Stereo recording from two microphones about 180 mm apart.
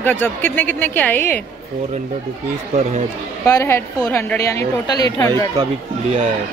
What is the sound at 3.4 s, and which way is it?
Speech, 15° left (ahead or behind).